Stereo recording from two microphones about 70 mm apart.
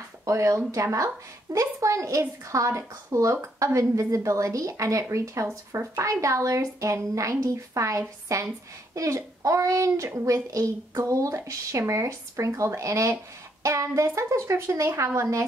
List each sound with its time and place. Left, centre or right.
0.2 s a woman's voice: right